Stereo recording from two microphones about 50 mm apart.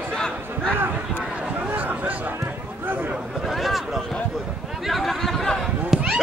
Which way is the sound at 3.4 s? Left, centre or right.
Centre.